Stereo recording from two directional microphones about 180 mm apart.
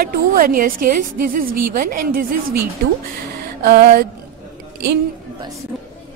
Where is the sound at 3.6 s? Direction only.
55° right (ahead or behind).